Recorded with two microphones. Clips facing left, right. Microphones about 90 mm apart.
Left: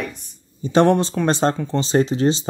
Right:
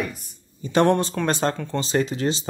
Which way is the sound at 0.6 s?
30° left (ahead or behind).